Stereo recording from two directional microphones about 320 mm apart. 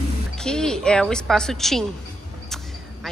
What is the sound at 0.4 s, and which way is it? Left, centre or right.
A woman's voice, centre.